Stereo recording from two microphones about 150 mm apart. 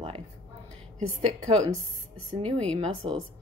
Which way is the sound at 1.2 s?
50° right (ahead or behind).